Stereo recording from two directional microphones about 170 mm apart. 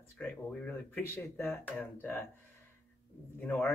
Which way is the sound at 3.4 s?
10° left (ahead or behind).